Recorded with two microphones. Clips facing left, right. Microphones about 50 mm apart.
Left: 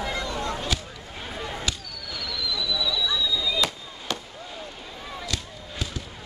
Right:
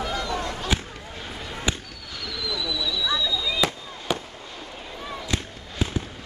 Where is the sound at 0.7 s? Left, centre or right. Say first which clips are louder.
Right 4 dB; right.